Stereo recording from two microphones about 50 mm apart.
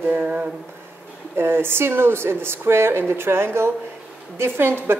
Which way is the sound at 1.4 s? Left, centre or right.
Right.